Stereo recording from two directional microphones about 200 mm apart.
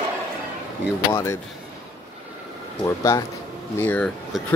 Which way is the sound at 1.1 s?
15° left (ahead or behind).